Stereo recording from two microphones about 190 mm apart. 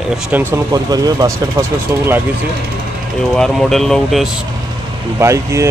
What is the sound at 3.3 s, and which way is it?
Speech, centre (ahead or behind).